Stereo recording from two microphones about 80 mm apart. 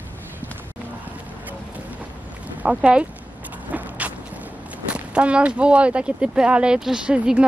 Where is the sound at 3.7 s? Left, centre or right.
Centre.